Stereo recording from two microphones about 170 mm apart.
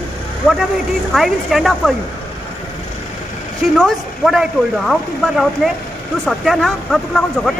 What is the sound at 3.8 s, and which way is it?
A woman's voice, 5° right (ahead or behind).